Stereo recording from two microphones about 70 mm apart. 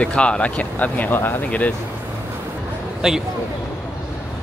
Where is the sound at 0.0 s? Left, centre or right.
Centre.